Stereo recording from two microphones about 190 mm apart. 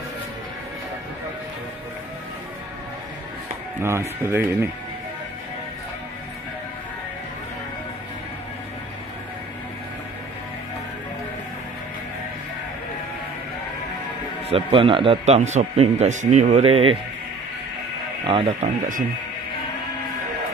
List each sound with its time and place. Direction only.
3.8 s speech: 15° right (ahead or behind)
14.5 s speech: 30° right (ahead or behind)
18.2 s speech: 25° right (ahead or behind)